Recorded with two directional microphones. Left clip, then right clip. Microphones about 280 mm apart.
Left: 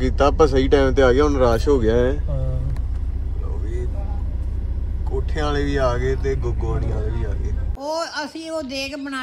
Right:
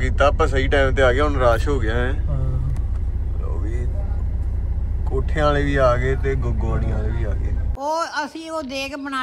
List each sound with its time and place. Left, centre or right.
0.0 s speech: centre
5.3 s speech: centre
7.8 s speech: centre